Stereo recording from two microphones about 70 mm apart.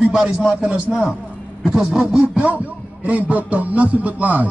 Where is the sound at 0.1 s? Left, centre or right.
Centre.